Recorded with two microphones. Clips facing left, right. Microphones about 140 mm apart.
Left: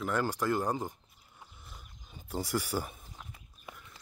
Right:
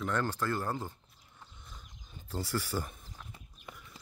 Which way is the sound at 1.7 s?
10° left (ahead or behind).